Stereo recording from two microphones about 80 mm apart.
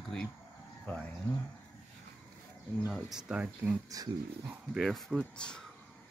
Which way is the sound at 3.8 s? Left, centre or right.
Right.